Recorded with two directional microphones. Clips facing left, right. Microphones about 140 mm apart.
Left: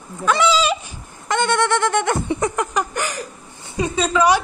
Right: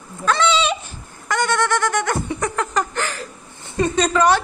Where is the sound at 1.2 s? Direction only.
25° left (ahead or behind).